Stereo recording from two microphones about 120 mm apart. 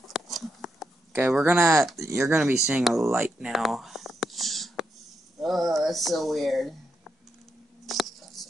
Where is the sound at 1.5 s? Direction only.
25° right (ahead or behind).